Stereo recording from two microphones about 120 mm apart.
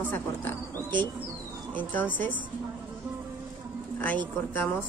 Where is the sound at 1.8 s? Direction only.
15° left (ahead or behind).